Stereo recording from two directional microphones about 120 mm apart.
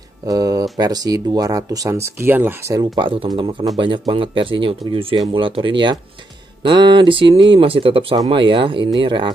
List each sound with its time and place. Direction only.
0.3 s speech: 30° right (ahead or behind)
2.7 s speech: 40° right (ahead or behind)